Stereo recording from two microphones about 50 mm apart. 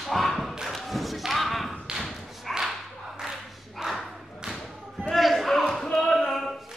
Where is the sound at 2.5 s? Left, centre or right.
Centre.